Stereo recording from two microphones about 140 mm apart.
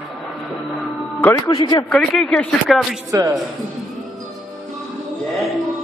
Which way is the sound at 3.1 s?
25° right (ahead or behind).